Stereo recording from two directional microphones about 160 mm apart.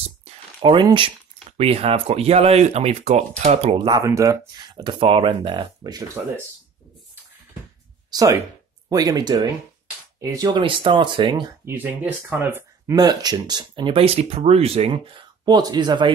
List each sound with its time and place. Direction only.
0.3 s a sound: 35° right (ahead or behind)
0.8 s speech: 30° right (ahead or behind)
3.7 s speech: 25° right (ahead or behind)
8.1 s speech: 25° right (ahead or behind)
11.6 s speech: 10° right (ahead or behind); by 16.1 s 30° right (ahead or behind)